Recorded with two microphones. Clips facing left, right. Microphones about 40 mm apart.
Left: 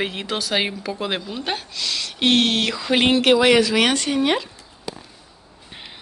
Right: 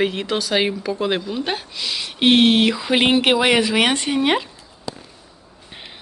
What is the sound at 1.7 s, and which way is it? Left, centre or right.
Speech, centre.